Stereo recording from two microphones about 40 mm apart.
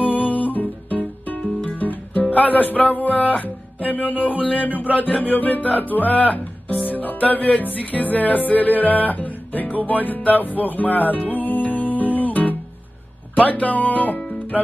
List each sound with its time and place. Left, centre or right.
0.0 s music: left
5.9 s speech: left
6.9 s music: left